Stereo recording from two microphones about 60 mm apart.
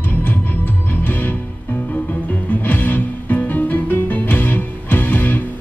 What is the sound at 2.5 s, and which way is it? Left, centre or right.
Music, left.